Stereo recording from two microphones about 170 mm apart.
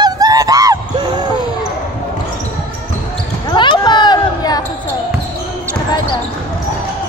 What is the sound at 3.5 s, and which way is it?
Basketball bounce, 25° left (ahead or behind).